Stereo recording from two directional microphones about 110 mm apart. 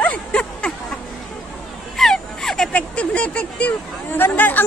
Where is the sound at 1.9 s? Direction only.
5° left (ahead or behind).